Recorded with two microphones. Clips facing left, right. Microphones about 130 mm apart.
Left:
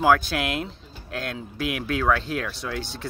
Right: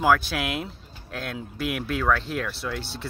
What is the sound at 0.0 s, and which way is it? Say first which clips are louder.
Speech: left 2 dB; centre (ahead or behind).